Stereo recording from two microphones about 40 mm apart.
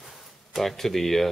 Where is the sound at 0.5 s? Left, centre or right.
Centre.